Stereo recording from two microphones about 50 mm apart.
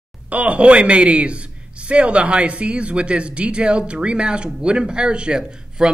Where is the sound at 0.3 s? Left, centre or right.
Right.